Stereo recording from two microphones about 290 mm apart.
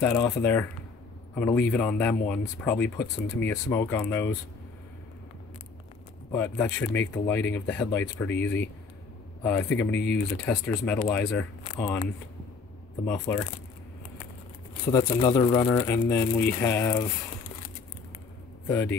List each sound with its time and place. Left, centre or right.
0.0 s speech: centre
6.3 s speech: centre
9.9 s speech: left
10.4 s speech: centre
14.9 s speech: centre